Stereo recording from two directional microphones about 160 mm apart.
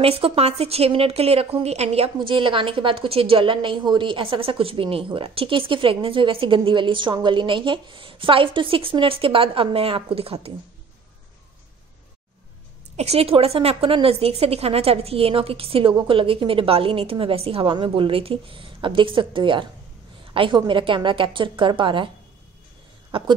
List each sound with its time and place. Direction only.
0.0 s a woman's voice: 35° right (ahead or behind)
12.9 s a woman's voice: 40° right (ahead or behind)
23.1 s a woman's voice: 35° right (ahead or behind)